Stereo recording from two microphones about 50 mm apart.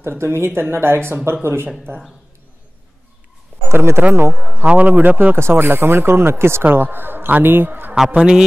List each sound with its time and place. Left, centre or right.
0.2 s speech: right
3.6 s speech: right
4.3 s speech: centre
4.6 s speech: right
5.3 s speech: right
6.6 s speech: right
8.1 s speech: centre